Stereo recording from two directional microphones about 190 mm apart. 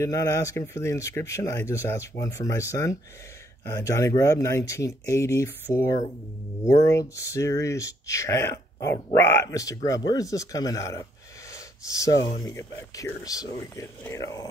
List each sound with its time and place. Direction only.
0.0 s speech: 15° left (ahead or behind)